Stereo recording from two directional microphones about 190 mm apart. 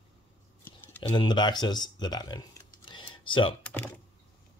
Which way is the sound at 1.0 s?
25° left (ahead or behind).